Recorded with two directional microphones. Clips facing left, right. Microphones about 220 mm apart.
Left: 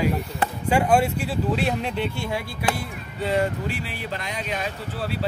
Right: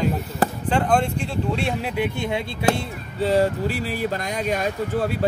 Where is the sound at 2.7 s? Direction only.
30° right (ahead or behind).